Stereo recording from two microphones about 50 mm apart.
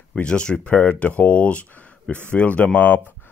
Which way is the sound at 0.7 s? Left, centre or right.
Left.